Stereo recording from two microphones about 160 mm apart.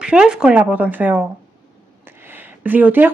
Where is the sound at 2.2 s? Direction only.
10° right (ahead or behind).